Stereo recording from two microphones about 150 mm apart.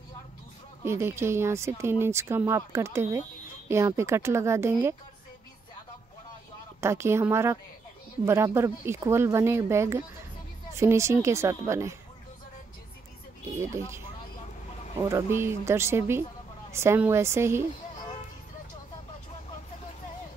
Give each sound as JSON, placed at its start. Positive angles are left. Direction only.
{"t": 0.8, "sound": "speech", "side_deg": -15}
{"t": 6.8, "sound": "a woman's voice", "side_deg": -15}
{"t": 13.6, "sound": "speech", "side_deg": -20}
{"t": 15.0, "sound": "speech", "side_deg": -15}